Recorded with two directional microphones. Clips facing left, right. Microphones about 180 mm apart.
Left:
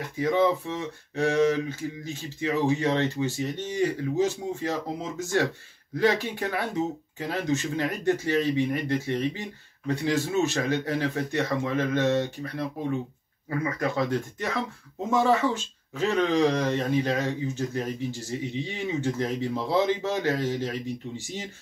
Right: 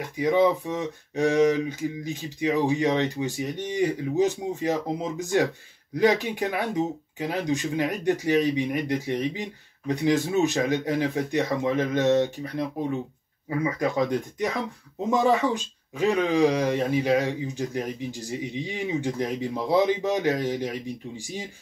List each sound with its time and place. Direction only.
0.2 s speech: 15° right (ahead or behind)